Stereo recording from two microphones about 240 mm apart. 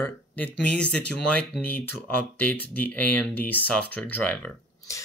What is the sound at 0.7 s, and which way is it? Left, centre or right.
Speech, centre.